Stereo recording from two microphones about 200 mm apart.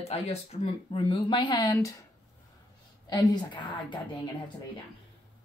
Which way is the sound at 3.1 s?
20° left (ahead or behind).